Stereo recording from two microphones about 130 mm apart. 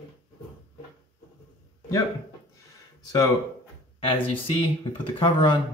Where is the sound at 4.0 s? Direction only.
45° left (ahead or behind).